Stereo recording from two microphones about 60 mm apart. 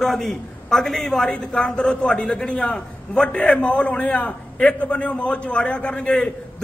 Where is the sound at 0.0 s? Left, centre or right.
Centre.